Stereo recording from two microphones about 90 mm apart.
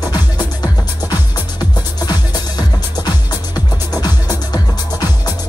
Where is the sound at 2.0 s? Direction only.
50° left (ahead or behind).